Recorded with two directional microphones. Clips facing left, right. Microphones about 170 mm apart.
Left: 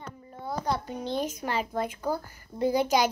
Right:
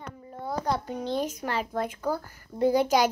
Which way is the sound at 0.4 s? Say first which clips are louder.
Right 1 dB; 5° left (ahead or behind).